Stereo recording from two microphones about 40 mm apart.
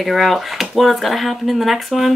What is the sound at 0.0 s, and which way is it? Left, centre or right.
Speech, centre.